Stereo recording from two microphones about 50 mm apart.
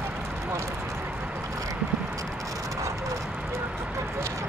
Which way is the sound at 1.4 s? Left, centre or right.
Right.